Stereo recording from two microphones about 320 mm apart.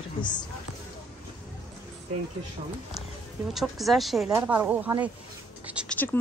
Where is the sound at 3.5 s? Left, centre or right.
Centre.